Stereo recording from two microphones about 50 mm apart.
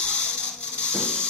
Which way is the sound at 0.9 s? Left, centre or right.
Centre.